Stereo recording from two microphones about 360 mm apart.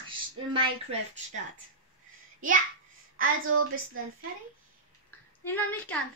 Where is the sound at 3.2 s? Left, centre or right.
Right.